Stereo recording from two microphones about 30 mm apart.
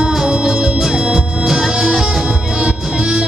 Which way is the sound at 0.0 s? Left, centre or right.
Centre.